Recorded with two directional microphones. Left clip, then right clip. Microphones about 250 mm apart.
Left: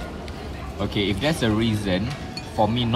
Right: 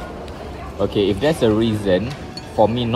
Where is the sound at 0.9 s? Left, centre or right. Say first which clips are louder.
Right 5 dB; left.